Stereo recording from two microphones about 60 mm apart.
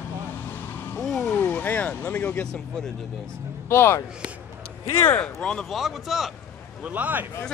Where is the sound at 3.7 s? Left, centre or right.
Left.